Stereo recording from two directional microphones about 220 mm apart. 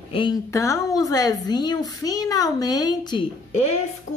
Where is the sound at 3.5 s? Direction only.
30° left (ahead or behind).